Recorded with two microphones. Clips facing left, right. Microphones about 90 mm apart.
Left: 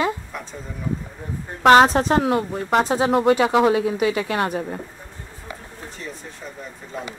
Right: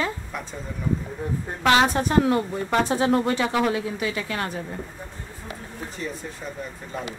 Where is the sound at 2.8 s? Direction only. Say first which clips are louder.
Left 2 dB; 30° left (ahead or behind).